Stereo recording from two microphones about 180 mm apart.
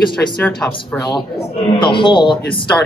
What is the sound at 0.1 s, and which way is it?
Speech, 5° left (ahead or behind).